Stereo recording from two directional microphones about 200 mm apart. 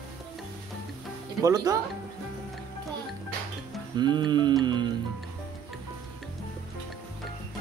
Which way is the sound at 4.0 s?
20° right (ahead or behind).